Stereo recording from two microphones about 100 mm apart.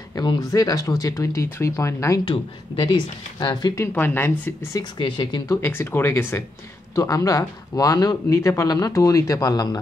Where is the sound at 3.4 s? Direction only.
45° left (ahead or behind).